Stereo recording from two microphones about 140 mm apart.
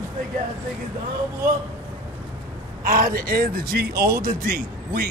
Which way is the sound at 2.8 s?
90° right.